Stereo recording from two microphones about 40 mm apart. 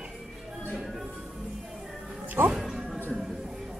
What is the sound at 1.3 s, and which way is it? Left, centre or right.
Music, centre.